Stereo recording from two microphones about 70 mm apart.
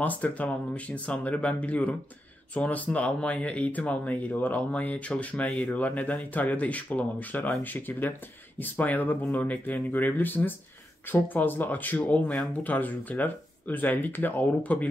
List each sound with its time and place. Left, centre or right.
0.0 s speech: left